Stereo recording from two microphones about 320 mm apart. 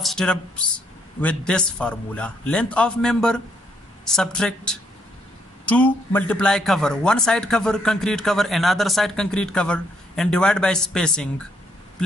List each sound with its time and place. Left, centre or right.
0.0 s speech: centre